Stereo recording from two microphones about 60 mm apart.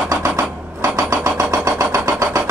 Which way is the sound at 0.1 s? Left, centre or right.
Right.